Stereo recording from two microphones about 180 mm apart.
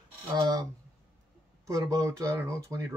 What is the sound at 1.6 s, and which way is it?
Speech, 20° right (ahead or behind).